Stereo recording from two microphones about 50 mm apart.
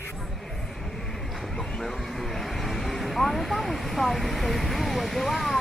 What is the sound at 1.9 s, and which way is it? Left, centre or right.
Vehicle, centre.